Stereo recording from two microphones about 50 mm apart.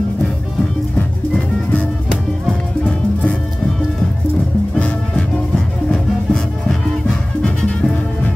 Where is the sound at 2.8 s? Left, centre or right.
Left.